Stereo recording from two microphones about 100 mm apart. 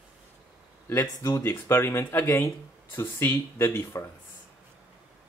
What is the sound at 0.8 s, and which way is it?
Speech, 30° left (ahead or behind).